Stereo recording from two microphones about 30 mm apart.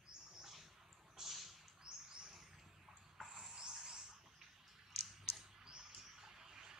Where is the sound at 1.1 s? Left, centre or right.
Centre.